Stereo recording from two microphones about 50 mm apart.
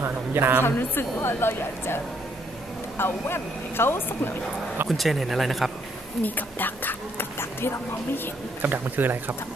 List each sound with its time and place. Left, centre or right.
0.0 s a woman's voice: right
0.6 s a woman's voice: left
3.0 s a woman's voice: left
4.8 s speech: centre
6.2 s speech: left
8.6 s speech: right